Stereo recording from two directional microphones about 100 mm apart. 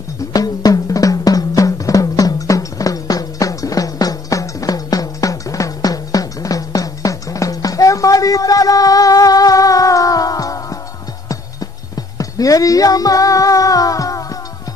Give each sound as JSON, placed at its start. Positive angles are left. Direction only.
{"t": 0.3, "sound": "drum", "side_deg": 40}
{"t": 12.2, "sound": "music", "side_deg": 35}